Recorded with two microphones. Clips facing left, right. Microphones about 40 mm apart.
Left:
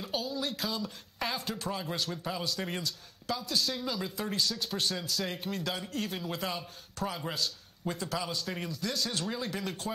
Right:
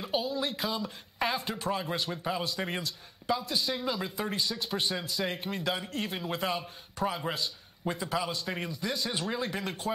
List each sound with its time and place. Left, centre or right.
0.0 s speech: centre